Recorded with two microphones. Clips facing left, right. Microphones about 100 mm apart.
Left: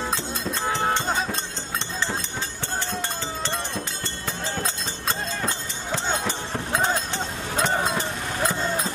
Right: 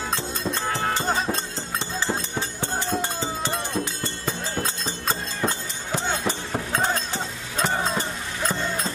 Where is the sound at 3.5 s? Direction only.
Centre (ahead or behind).